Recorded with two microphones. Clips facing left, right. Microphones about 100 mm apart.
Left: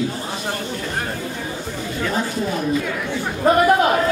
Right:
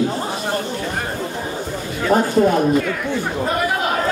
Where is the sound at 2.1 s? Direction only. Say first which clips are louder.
Right 10 dB; 55° right (ahead or behind).